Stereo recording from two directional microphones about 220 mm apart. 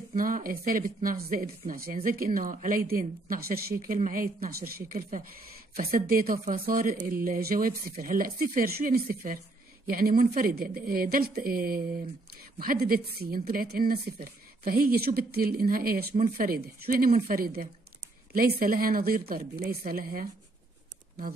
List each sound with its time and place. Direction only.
0.1 s a woman's voice: 40° right (ahead or behind)